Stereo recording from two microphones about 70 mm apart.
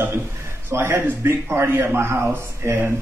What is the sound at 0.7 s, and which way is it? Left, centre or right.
A man's voice, right.